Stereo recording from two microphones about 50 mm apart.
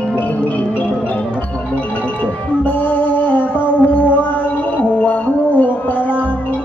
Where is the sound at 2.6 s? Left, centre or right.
Left.